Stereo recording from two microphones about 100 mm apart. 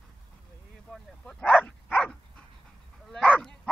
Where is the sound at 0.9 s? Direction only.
10° left (ahead or behind).